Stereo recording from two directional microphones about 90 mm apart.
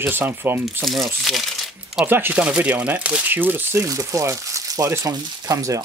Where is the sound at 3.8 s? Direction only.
35° right (ahead or behind).